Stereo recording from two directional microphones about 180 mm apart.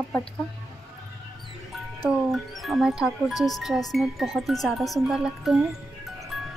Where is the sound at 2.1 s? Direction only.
Centre (ahead or behind).